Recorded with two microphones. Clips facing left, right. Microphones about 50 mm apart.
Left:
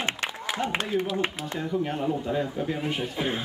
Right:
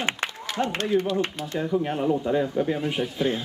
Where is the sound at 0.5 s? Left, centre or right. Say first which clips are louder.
Right 4 dB; centre.